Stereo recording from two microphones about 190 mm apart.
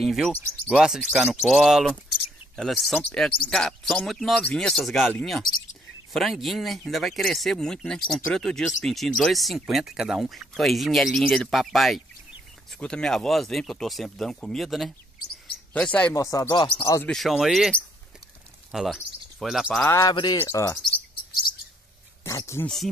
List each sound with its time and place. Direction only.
0.0 s speech: centre (ahead or behind); by 17.0 s 25° left (ahead or behind)
17.0 s speech: centre (ahead or behind)
19.9 s speech: 15° left (ahead or behind)
22.2 s speech: 15° left (ahead or behind)